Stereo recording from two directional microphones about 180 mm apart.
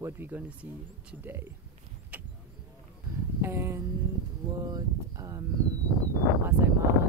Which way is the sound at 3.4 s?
15° right (ahead or behind).